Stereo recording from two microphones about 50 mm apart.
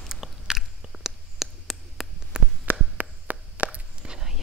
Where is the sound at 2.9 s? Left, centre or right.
Right.